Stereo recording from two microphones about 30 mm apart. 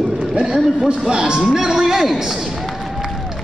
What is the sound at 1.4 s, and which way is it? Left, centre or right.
Speech, centre.